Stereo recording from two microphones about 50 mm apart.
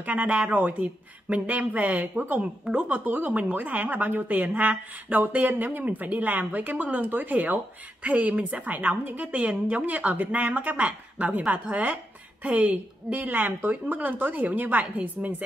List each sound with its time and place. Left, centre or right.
0.0 s speech: right